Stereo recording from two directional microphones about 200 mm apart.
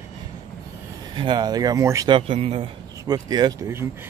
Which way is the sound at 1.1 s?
20° right (ahead or behind).